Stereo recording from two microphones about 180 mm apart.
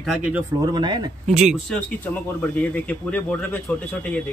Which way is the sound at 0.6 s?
25° right (ahead or behind).